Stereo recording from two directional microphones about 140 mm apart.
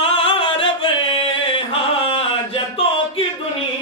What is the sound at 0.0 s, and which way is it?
Music, 40° left (ahead or behind).